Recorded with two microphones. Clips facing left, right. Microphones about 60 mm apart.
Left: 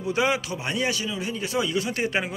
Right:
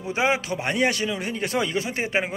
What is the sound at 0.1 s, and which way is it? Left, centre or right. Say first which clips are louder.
A man's voice: right 1 dB; right.